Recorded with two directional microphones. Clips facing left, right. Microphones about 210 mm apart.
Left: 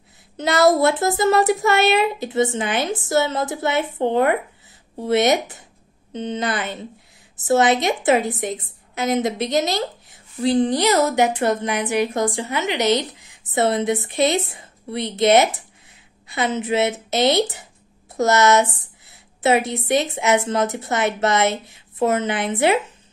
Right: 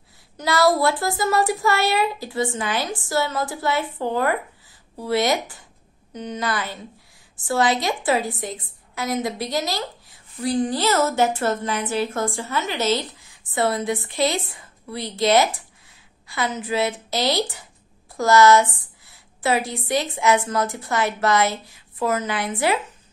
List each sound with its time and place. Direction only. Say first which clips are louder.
0.4 s a woman's voice: left 3 dB; 20° left (ahead or behind)